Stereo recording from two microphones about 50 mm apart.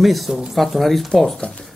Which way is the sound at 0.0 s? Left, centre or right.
Centre.